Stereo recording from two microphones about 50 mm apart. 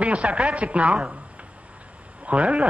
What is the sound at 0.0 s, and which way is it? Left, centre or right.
Speech, right.